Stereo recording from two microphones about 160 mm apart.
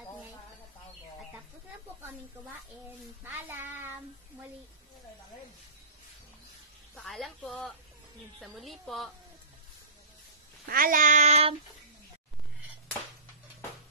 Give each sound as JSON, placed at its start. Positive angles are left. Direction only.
{"t": 3.3, "sound": "a child's voice", "side_deg": -15}
{"t": 7.0, "sound": "speech", "side_deg": 0}
{"t": 10.7, "sound": "child singing", "side_deg": -60}